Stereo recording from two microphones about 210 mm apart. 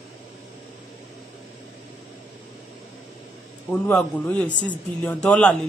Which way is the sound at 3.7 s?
5° left (ahead or behind).